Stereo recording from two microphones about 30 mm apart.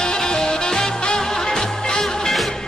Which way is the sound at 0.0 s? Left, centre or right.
Left.